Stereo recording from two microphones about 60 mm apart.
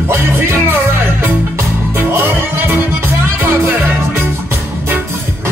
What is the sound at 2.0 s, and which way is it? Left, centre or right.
Music, right.